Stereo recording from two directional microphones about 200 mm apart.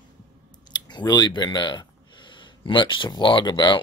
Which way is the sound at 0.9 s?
20° left (ahead or behind).